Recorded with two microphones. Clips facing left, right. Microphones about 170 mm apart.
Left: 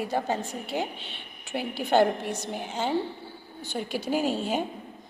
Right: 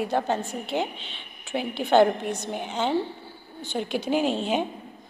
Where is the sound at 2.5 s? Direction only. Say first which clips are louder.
Right 2 dB; 60° right (ahead or behind).